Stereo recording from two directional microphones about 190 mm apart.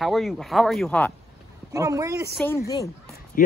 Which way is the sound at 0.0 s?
Centre (ahead or behind).